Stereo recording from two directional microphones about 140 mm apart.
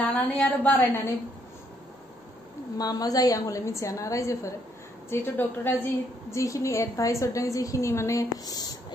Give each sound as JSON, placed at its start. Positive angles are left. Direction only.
{"t": 0.0, "sound": "a woman's voice", "side_deg": 10}
{"t": 2.8, "sound": "a woman's voice", "side_deg": 25}